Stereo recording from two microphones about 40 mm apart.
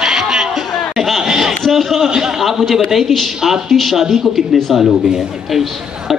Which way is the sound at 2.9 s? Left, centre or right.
Centre.